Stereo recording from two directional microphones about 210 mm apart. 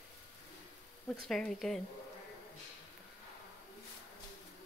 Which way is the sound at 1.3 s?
Centre (ahead or behind).